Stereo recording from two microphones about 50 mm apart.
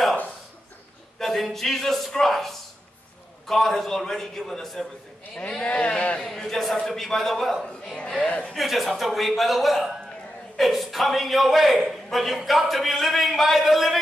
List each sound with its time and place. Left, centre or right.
1.2 s a man's voice: centre
5.6 s speech: left
6.2 s a man's voice: centre
7.6 s a man's voice: centre
8.2 s speech: left
8.5 s a man's voice: centre